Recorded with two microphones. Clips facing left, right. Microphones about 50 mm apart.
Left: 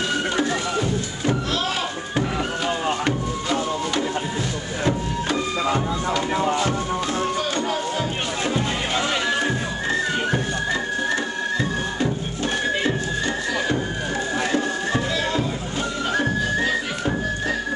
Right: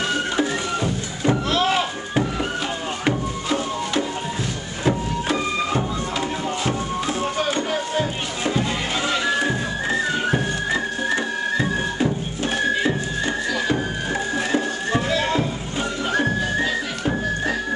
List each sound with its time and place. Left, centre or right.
0.4 s music: centre
1.5 s a sound: right
3.1 s music: centre
7.2 s music: centre
9.4 s music: centre
14.9 s music: centre